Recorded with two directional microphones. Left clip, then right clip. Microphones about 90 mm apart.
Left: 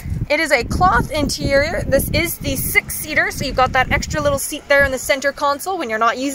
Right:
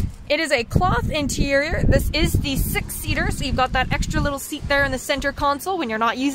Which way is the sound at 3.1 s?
10° right (ahead or behind).